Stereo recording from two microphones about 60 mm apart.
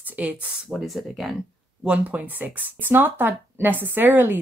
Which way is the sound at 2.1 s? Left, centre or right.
Right.